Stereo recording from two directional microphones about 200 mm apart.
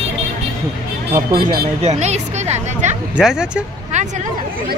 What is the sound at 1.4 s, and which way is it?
Speech, 50° right (ahead or behind).